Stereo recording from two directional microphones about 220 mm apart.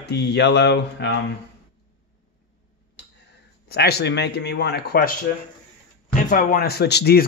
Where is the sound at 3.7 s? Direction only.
45° left (ahead or behind).